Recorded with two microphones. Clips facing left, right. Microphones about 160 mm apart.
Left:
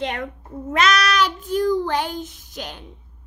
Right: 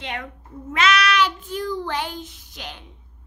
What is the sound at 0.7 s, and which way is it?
Child singing, 40° left (ahead or behind).